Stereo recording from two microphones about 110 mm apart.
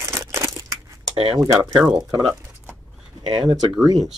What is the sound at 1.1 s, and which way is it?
Speech, 60° right (ahead or behind).